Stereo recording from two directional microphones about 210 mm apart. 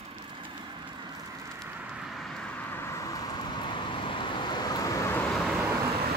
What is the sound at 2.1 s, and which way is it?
Vehicle, centre (ahead or behind).